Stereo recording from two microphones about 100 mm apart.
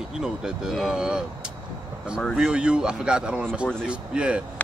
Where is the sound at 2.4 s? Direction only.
10° right (ahead or behind).